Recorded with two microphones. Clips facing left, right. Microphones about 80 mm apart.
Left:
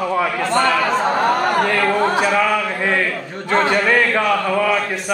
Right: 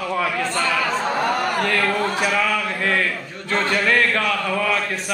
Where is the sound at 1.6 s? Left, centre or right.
Centre.